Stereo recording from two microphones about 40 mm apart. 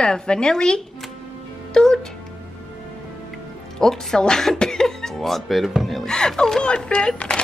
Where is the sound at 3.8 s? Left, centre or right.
Centre.